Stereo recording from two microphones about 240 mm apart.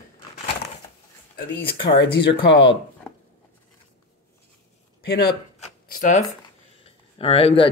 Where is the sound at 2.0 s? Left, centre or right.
Left.